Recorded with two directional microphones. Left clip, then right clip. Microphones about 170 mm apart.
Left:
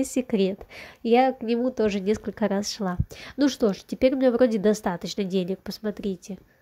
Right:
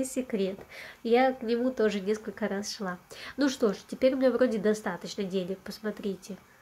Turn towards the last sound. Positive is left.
turn(degrees=45)  # may be behind; listen again after turning